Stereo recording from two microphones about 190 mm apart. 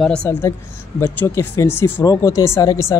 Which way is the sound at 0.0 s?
5° left (ahead or behind).